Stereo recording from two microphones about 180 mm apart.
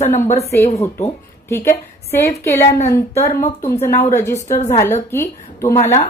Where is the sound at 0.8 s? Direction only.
15° left (ahead or behind).